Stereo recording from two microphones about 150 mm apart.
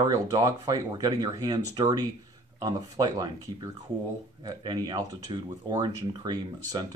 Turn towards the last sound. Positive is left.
turn(degrees=-30)  # may be behind; listen again after turning